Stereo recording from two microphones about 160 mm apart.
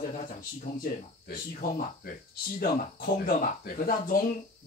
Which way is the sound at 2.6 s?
60° left (ahead or behind).